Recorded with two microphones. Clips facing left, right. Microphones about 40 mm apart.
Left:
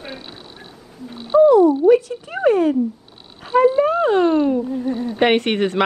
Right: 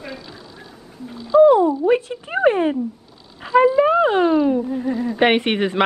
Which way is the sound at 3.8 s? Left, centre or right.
Right.